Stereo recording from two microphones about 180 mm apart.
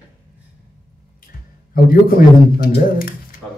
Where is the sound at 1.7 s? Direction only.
55° left (ahead or behind).